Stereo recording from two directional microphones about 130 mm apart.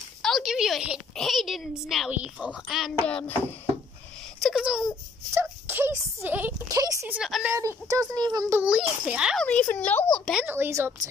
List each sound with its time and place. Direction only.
0.2 s a woman's voice: centre (ahead or behind)
3.1 s speech: 10° left (ahead or behind)
4.4 s speech: centre (ahead or behind)
5.3 s speech: 15° right (ahead or behind)
6.7 s speech: 25° right (ahead or behind)
7.1 s a child's voice: 5° right (ahead or behind)
7.4 s speech: 20° right (ahead or behind)
8.5 s a child's voice: 5° right (ahead or behind)
9.4 s speech: 10° left (ahead or behind)
10.4 s a child's voice: 15° right (ahead or behind)